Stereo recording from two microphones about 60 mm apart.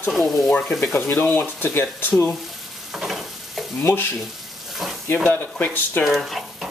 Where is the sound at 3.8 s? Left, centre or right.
Left.